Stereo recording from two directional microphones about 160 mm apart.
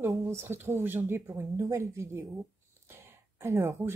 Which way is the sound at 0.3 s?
15° right (ahead or behind).